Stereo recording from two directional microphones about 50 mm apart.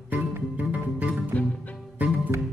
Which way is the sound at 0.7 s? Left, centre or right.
Right.